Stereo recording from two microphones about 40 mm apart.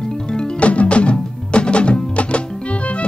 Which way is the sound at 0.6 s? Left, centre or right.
Left.